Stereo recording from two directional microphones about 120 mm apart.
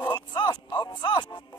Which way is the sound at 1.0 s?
40° left (ahead or behind).